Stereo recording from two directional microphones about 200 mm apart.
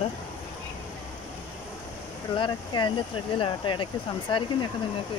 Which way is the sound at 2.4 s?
25° left (ahead or behind).